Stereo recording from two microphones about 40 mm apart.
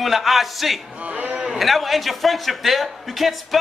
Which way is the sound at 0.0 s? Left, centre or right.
Centre.